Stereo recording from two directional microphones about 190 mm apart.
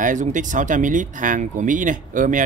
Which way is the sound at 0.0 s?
40° right (ahead or behind).